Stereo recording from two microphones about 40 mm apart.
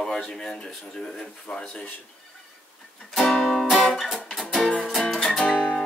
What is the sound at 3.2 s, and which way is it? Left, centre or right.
Music, centre.